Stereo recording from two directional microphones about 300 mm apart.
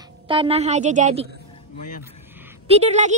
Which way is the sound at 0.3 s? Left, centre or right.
Centre.